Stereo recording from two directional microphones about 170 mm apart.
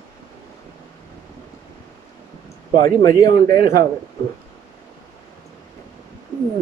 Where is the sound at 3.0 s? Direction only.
20° left (ahead or behind).